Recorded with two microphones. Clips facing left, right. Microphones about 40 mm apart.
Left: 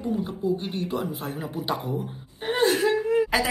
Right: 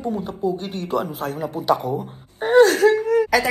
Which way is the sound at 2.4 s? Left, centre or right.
Left.